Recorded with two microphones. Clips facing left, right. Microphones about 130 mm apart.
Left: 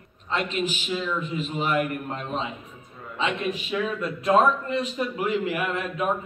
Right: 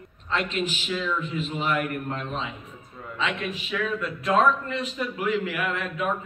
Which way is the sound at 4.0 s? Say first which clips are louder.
Left 3 dB; 35° left (ahead or behind).